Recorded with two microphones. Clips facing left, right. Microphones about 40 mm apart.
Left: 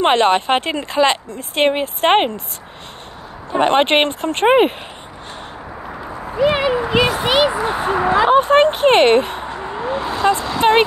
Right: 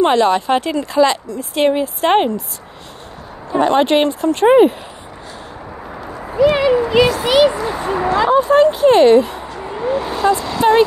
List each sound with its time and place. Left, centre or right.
0.0 s speech: left
3.5 s speech: left
6.4 s speech: left
7.6 s speech: left
9.5 s a sound: centre
10.2 s vehicle: left